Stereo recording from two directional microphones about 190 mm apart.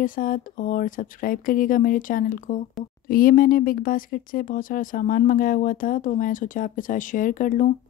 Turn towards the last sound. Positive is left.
turn(degrees=45)  # may be behind; listen again after turning